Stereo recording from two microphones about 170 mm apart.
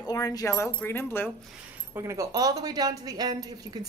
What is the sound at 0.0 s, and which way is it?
Speech, 20° left (ahead or behind).